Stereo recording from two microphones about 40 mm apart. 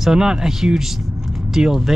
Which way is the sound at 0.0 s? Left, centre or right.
Centre.